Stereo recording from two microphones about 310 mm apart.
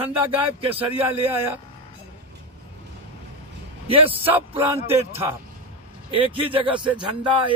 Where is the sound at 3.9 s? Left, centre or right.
Centre.